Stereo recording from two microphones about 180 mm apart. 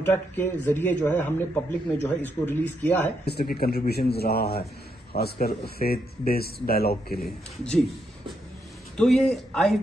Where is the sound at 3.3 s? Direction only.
60° left (ahead or behind).